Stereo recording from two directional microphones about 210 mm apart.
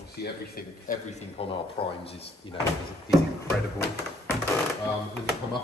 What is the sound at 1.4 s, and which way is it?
Speech, 30° left (ahead or behind).